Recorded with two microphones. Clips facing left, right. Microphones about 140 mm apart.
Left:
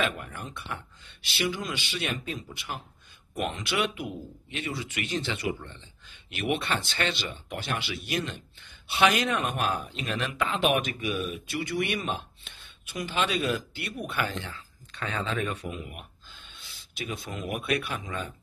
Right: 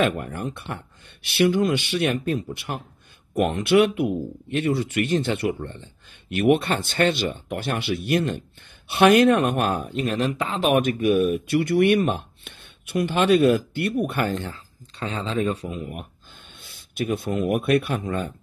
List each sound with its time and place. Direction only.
0.0 s speech: 50° right (ahead or behind)
14.9 s speech: 30° right (ahead or behind)
16.5 s speech: 55° right (ahead or behind)